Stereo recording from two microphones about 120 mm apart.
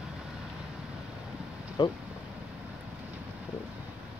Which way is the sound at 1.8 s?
45° left (ahead or behind).